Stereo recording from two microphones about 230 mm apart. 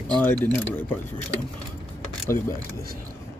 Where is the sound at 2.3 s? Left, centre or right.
Left.